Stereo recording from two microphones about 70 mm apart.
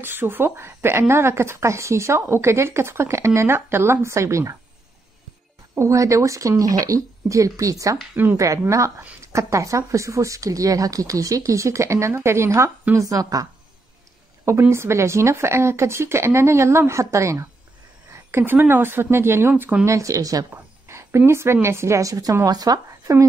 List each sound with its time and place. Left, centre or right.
0.0 s a woman's voice: right
5.8 s speech: right
12.9 s speech: right
14.7 s a woman's voice: right
18.1 s a woman's voice: right
19.8 s speech: right
20.8 s a sound: right
21.3 s speech: right
22.5 s speech: right